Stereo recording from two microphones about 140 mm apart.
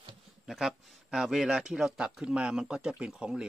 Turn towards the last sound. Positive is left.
turn(degrees=-5)  # may be behind; listen again after turning